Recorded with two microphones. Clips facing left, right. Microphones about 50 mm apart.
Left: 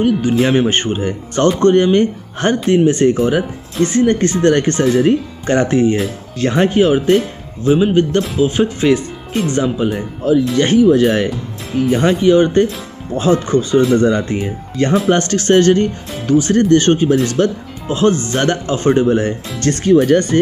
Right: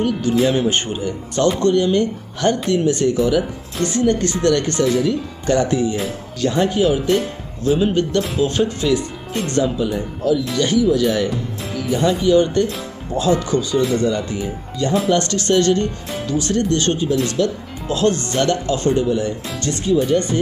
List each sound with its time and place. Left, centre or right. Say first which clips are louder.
0.0 s speech: left 3 dB; left
7.6 s speech: left 5 dB; left
8.4 s speech: left 4 dB; centre
9.6 s speech: right 1 dB; left
17.4 s speech: left 3 dB; left
17.8 s speech: left 4 dB; left
19.0 s speech: left 5 dB; left
19.6 s speech: left 7 dB; left